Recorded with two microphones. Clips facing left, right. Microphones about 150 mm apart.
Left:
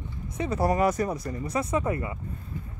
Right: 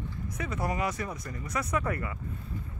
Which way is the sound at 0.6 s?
45° left (ahead or behind).